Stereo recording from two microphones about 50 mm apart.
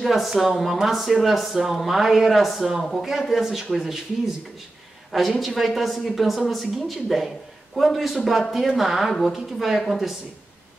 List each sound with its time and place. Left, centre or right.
0.0 s a woman's voice: centre
5.1 s a woman's voice: centre